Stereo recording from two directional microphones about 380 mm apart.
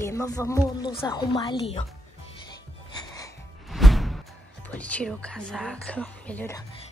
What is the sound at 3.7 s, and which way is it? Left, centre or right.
Music, centre.